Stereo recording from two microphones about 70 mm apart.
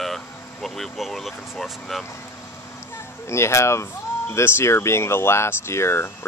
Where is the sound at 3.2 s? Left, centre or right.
Left.